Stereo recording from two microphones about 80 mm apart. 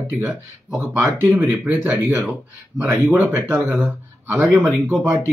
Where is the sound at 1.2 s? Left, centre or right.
Right.